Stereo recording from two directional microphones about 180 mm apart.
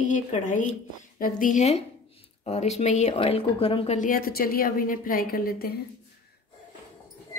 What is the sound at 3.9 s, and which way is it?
A woman's voice, 50° left (ahead or behind).